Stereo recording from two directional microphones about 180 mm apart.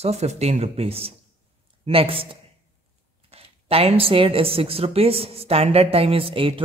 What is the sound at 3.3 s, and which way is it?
A woman's voice, 35° right (ahead or behind).